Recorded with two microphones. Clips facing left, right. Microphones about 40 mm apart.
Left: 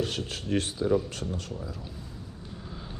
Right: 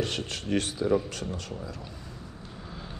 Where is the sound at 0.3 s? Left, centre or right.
Centre.